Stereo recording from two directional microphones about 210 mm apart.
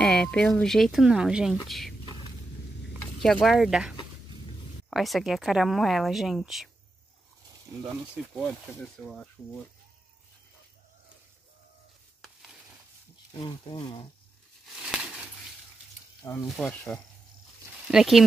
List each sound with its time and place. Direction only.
0.0 s speech: 5° left (ahead or behind)
2.9 s speech: centre (ahead or behind)
7.8 s speech: 5° right (ahead or behind)
12.2 s stir: centre (ahead or behind)
13.3 s speech: 20° left (ahead or behind)
14.8 s a sound: 5° right (ahead or behind)
16.4 s speech: 5° left (ahead or behind)